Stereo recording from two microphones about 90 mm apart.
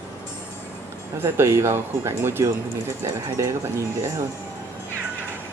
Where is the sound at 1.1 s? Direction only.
30° right (ahead or behind).